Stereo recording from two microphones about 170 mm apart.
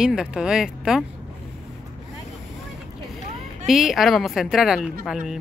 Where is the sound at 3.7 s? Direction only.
Centre (ahead or behind).